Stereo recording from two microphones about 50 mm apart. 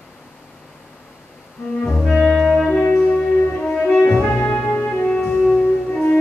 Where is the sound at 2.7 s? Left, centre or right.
Left.